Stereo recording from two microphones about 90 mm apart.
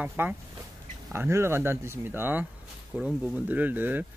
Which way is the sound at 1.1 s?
30° right (ahead or behind).